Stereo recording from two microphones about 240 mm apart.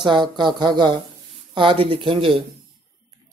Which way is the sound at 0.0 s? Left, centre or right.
Centre.